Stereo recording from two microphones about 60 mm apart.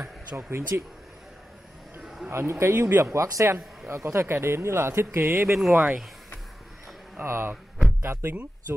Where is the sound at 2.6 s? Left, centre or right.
Right.